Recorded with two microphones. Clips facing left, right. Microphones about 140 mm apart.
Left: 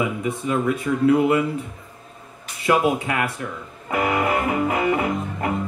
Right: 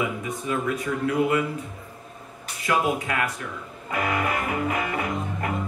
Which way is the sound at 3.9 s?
25° left (ahead or behind).